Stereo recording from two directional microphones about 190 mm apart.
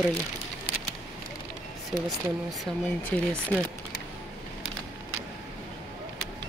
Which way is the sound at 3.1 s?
5° left (ahead or behind).